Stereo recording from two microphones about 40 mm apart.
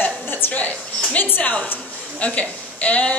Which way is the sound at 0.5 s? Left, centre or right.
Left.